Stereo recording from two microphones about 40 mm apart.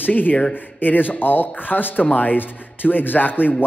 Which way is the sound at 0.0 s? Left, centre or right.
Left.